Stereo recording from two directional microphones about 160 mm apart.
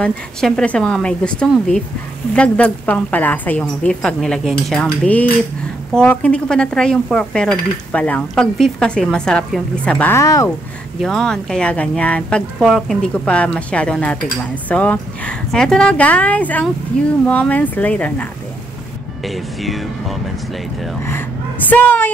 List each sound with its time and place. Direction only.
0.0 s dishes: 5° left (ahead or behind)
2.3 s speech: 10° left (ahead or behind)
5.9 s dishes: 5° left (ahead or behind)
11.0 s speech: 5° left (ahead or behind)
19.2 s dishes: centre (ahead or behind)
21.6 s speech: 10° left (ahead or behind)